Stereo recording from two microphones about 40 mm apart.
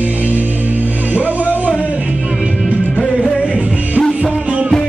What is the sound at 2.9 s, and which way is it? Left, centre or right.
Music, left.